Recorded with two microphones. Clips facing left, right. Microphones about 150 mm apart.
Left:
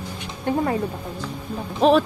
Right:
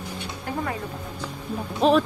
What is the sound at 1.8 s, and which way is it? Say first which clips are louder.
Speech: left 3 dB; centre (ahead or behind).